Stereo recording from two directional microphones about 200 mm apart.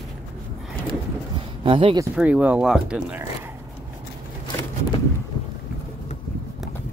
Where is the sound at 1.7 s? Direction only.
25° right (ahead or behind).